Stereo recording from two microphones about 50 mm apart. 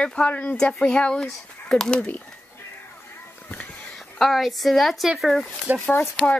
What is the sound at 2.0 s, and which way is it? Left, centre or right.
Speech, left.